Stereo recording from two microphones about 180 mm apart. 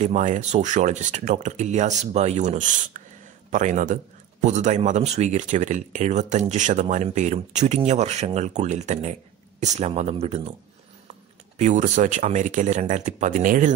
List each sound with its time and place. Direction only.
0.0 s a man's voice: 40° right (ahead or behind)
11.5 s speech: 40° right (ahead or behind)